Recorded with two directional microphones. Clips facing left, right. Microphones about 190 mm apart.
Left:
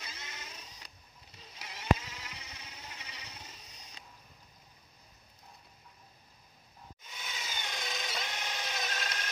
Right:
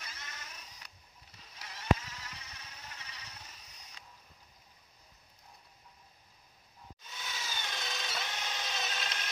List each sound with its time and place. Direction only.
0.0 s cat: 20° left (ahead or behind)
1.4 s insect: 20° left (ahead or behind)
7.1 s tools: 15° left (ahead or behind)
8.8 s a sound: 5° right (ahead or behind)